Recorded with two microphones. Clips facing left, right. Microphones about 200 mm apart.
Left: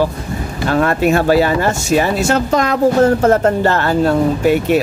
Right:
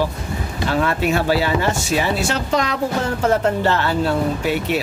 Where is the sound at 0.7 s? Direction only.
50° left (ahead or behind).